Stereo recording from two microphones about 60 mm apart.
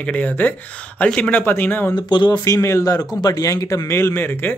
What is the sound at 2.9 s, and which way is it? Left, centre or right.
Speech, left.